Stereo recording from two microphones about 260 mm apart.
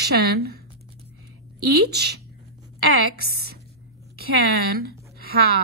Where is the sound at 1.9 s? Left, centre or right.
Right.